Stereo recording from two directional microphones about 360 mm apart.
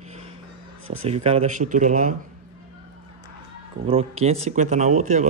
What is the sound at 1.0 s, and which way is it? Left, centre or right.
Speech, centre.